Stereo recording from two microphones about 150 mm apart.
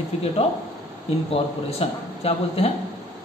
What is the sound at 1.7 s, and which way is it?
Speech, 40° left (ahead or behind).